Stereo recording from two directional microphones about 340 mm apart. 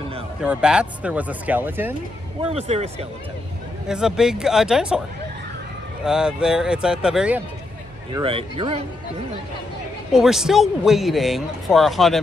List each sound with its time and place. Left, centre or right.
0.4 s speech: centre
2.5 s speech: centre
3.8 s speech: centre
6.0 s speech: centre
8.1 s speech: centre
10.1 s speech: centre